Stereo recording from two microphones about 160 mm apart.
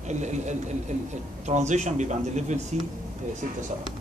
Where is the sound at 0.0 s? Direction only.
45° right (ahead or behind).